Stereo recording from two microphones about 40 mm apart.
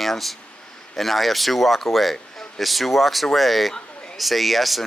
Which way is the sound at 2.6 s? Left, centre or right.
Centre.